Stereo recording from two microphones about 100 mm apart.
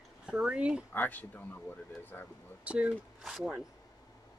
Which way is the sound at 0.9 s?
20° left (ahead or behind).